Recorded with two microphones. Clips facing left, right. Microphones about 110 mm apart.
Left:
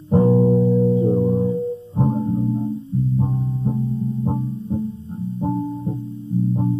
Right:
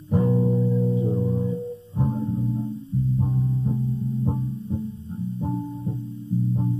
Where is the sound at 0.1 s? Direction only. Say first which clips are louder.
Left 7 dB; 30° left (ahead or behind).